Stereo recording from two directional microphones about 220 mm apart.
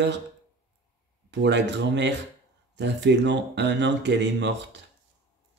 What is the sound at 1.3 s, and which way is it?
A man's voice, 55° right (ahead or behind).